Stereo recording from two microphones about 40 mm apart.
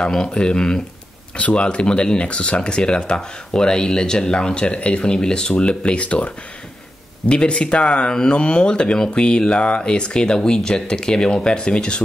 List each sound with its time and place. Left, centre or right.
0.1 s speech: centre
1.3 s speech: left